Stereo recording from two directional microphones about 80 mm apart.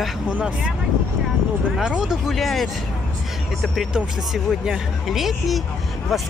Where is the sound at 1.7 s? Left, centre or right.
Centre.